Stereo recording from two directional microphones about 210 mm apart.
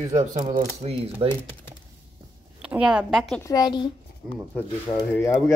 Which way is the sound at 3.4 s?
20° left (ahead or behind).